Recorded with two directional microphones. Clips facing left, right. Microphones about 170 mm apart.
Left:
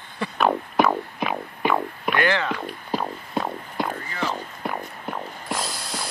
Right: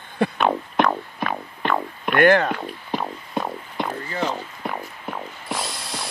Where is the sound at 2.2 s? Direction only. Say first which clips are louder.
Right 8 dB; 50° right (ahead or behind).